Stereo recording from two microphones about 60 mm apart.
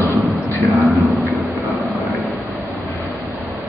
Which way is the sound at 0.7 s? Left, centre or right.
Centre.